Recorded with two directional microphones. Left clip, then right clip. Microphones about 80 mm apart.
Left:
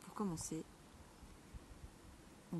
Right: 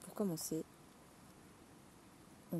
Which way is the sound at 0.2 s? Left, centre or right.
Left.